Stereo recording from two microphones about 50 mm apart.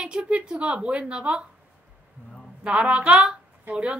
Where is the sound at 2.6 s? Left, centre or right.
Right.